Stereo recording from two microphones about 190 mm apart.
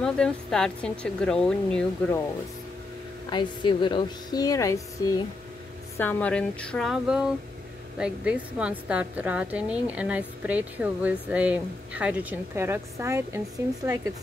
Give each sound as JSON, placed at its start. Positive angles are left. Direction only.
{"t": 0.0, "sound": "speech", "side_deg": 5}
{"t": 3.3, "sound": "a woman's voice", "side_deg": 25}